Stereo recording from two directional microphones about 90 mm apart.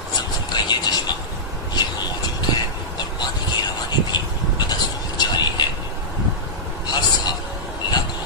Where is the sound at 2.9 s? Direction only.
50° left (ahead or behind).